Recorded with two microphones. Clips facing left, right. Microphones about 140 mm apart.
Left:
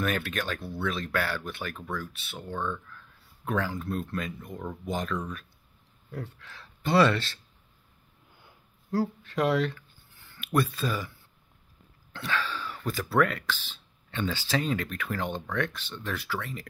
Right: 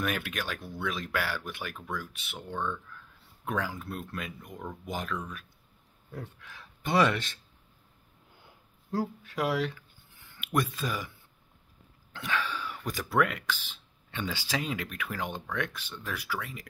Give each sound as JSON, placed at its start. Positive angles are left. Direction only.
{"t": 0.0, "sound": "speech", "side_deg": -10}
{"t": 8.9, "sound": "speech", "side_deg": -20}
{"t": 12.1, "sound": "speech", "side_deg": -15}